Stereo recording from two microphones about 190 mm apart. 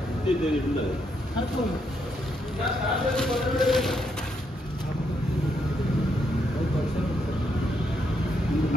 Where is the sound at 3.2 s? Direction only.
5° left (ahead or behind).